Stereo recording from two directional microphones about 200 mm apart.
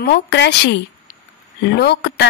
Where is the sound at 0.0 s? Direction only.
55° left (ahead or behind).